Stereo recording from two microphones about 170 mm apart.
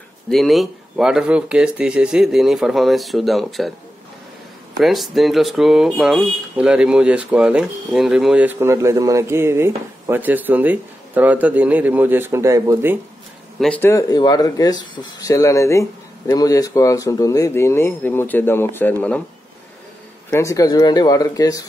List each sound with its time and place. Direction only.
0.3 s speech: centre (ahead or behind)
4.7 s speech: centre (ahead or behind); by 12.9 s 20° right (ahead or behind)
13.6 s speech: 10° left (ahead or behind)
20.2 s speech: 15° left (ahead or behind)